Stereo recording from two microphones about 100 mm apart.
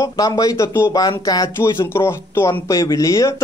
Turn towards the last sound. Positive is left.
turn(degrees=35)  # may be behind; listen again after turning